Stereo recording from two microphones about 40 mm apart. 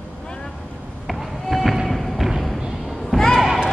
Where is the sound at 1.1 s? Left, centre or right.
Centre.